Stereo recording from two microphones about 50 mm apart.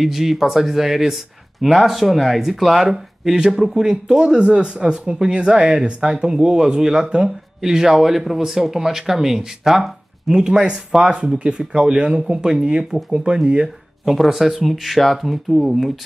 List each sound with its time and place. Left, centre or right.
0.0 s speech: centre; by 13.7 s right
14.0 s speech: centre